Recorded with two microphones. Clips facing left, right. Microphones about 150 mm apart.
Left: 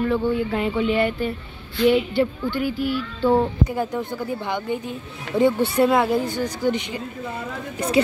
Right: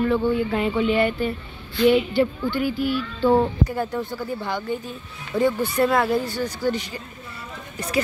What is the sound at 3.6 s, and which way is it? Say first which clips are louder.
Speech: left 1 dB; 15° left (ahead or behind).